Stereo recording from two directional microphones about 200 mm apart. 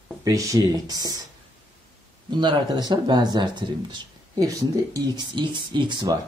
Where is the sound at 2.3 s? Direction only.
25° right (ahead or behind).